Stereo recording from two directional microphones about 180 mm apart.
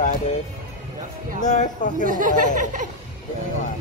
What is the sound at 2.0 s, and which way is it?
Speech, 45° right (ahead or behind).